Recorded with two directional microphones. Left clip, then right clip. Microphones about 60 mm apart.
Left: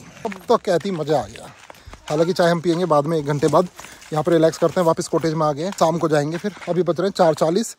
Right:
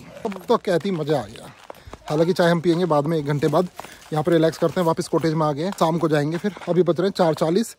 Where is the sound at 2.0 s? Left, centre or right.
Right.